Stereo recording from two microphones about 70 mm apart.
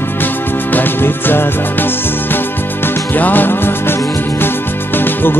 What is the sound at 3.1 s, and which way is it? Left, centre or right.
Music, left.